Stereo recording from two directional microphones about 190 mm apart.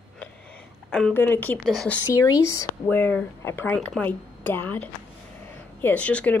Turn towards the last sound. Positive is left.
turn(degrees=5)  # may be behind; listen again after turning